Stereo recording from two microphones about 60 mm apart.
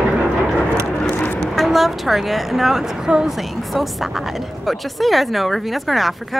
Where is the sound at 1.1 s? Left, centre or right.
Left.